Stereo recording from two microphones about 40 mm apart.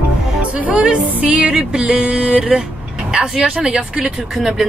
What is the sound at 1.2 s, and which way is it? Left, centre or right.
Music, right.